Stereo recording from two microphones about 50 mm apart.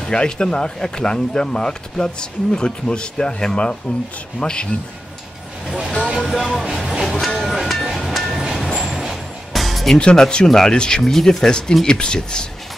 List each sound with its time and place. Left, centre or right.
0.0 s speech: centre
6.2 s music: centre
6.5 s speech: centre
6.8 s music: centre
9.9 s speech: centre